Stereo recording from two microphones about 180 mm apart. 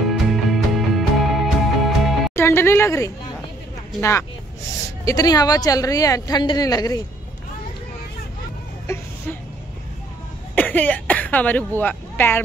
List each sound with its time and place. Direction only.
0.3 s music: centre (ahead or behind)
2.3 s a woman's voice: 15° left (ahead or behind)
8.8 s a sound: 15° left (ahead or behind)
10.5 s speech: 10° left (ahead or behind)